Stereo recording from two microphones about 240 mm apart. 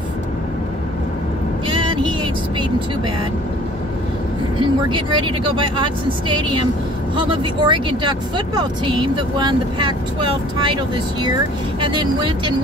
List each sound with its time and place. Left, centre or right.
1.7 s vehicle: centre
4.6 s speech: centre
11.8 s speech: centre